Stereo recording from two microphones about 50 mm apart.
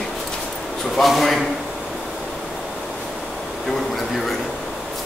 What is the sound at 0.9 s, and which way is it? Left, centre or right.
Speech, centre.